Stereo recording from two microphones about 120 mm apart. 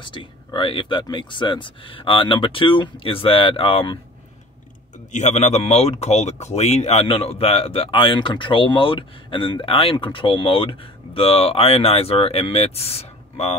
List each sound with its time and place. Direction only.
0.0 s speech: 45° left (ahead or behind)
5.1 s speech: 75° left (ahead or behind)